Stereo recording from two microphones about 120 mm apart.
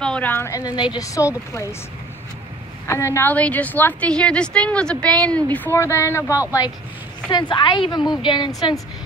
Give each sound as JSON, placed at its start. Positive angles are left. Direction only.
{"t": 0.0, "sound": "speech", "side_deg": 10}
{"t": 0.6, "sound": "speech", "side_deg": 35}
{"t": 2.9, "sound": "a woman's voice", "side_deg": 25}
{"t": 7.2, "sound": "speech", "side_deg": 40}